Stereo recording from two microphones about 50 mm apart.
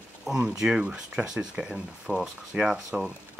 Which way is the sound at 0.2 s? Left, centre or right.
Centre.